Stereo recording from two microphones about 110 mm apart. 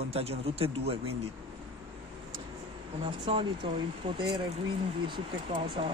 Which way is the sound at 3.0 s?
50° right (ahead or behind).